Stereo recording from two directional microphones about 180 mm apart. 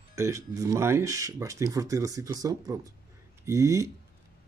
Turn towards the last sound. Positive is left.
turn(degrees=-15)  # may be behind; listen again after turning